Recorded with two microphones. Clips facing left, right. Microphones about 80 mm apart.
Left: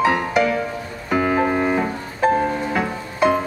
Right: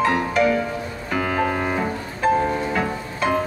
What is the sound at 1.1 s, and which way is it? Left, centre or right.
Music, left.